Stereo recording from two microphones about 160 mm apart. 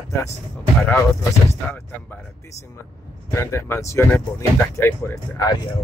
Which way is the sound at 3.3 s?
15° left (ahead or behind).